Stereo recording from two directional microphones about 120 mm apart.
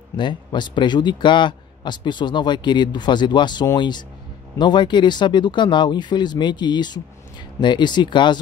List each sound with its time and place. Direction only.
0.1 s speech: 40° left (ahead or behind)